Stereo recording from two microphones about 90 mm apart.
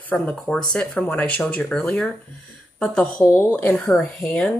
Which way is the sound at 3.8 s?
5° left (ahead or behind).